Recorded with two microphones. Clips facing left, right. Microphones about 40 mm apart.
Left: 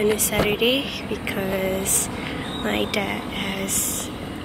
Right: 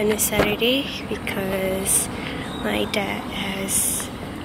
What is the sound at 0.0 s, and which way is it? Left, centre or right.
Speech, centre.